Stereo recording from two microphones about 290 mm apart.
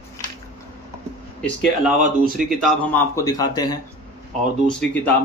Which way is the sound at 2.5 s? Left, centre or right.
Centre.